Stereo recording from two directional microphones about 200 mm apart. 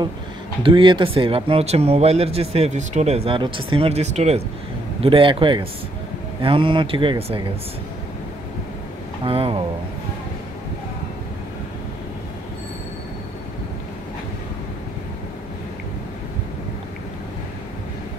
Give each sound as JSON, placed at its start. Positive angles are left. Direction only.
{"t": 0.6, "sound": "speech", "side_deg": -25}
{"t": 9.2, "sound": "speech", "side_deg": -25}